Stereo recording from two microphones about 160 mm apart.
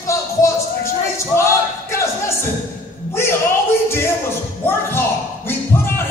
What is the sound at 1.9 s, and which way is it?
Music, 15° left (ahead or behind).